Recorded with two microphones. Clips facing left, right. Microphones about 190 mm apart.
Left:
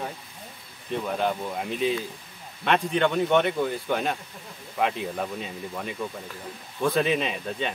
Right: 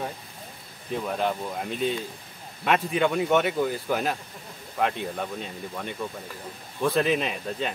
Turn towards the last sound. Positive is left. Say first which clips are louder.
# even
turn(degrees=0)  # may be behind; listen again after turning